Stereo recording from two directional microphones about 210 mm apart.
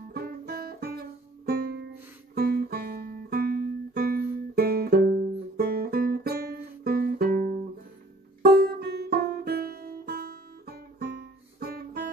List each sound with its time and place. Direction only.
0.1 s music: 50° right (ahead or behind)
2.3 s guitar: 50° right (ahead or behind)
5.6 s music: 50° right (ahead or behind)